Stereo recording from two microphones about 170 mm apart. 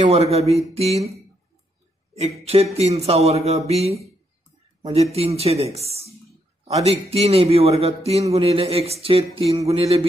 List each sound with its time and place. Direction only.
0.0 s a man's voice: 40° right (ahead or behind)
2.4 s a man's voice: 35° right (ahead or behind)
5.1 s a man's voice: 35° right (ahead or behind)